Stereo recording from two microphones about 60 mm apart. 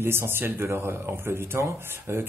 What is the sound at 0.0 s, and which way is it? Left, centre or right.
A man's voice, right.